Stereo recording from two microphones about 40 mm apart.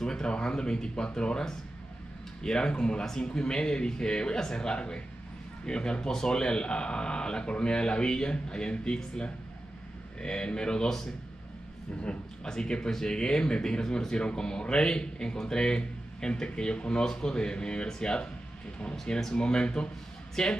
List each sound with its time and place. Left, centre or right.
0.0 s speech: centre
12.0 s speech: left
19.3 s speech: left
20.4 s a woman's voice: centre